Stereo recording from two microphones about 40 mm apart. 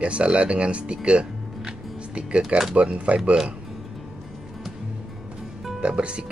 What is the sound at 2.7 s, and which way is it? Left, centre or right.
Speech, right.